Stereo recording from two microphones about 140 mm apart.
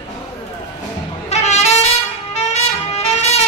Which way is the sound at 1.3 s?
50° left (ahead or behind).